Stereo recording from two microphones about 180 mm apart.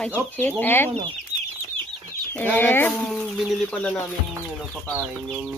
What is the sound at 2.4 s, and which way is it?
Speech, 10° left (ahead or behind).